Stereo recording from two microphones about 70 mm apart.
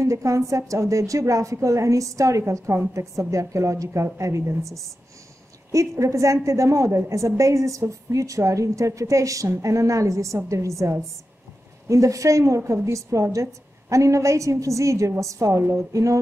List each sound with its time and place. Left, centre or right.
0.0 s a woman's voice: right